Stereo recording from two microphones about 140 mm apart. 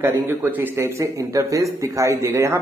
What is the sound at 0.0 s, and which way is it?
Speech, 20° right (ahead or behind).